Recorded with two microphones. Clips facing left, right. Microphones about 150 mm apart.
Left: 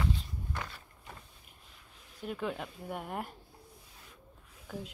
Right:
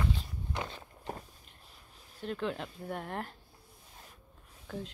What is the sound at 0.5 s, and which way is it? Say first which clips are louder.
Walk: right 4 dB; 20° right (ahead or behind).